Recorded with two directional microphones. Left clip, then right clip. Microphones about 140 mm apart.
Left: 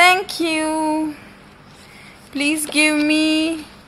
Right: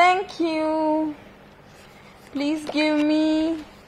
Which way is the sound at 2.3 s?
10° right (ahead or behind).